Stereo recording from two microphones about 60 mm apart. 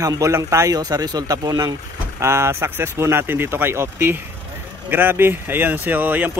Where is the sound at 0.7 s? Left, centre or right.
Right.